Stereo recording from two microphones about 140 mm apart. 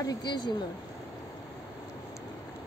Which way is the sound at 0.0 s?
30° left (ahead or behind).